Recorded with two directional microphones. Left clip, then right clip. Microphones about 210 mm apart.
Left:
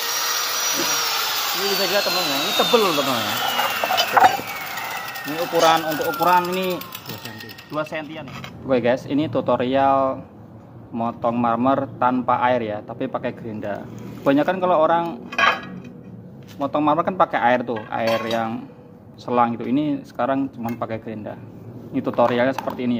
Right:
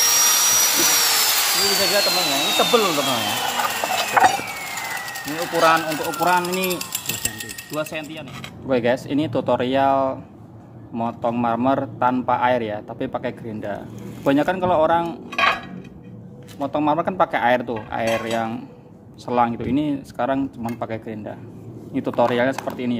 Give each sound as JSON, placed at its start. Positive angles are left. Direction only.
{"t": 0.0, "sound": "a sound", "side_deg": -15}
{"t": 5.2, "sound": "a man's voice", "side_deg": 5}
{"t": 7.7, "sound": "a man's voice", "side_deg": -5}
{"t": 16.5, "sound": "a man's voice", "side_deg": 0}